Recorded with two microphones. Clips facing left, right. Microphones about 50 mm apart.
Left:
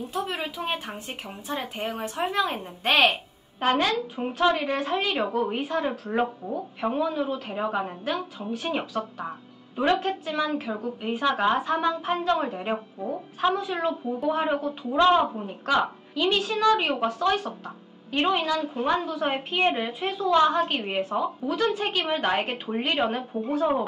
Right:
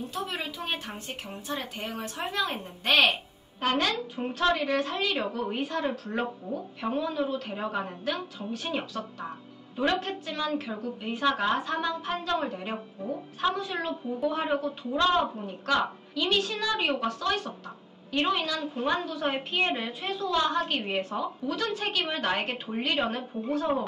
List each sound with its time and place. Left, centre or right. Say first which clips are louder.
0.1 s a woman's voice: left 4 dB; centre
2.0 s a woman's voice: left 5 dB; left
3.6 s a woman's voice: left 4 dB; centre
12.7 s a woman's voice: left 3 dB; centre
18.6 s a woman's voice: left 3 dB; centre
21.5 s a woman's voice: left 5 dB; left